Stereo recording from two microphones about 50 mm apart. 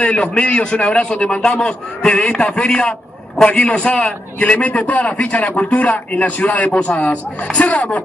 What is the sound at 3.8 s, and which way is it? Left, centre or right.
Speech, centre.